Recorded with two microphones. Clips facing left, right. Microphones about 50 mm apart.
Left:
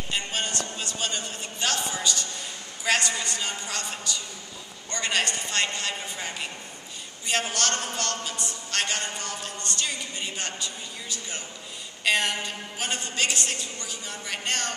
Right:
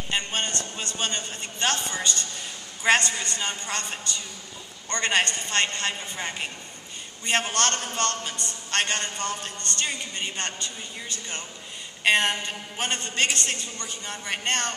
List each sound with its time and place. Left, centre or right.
0.1 s a man's voice: right
2.8 s a man's voice: right